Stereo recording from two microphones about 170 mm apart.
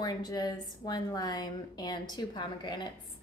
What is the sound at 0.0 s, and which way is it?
A woman's voice, 25° left (ahead or behind).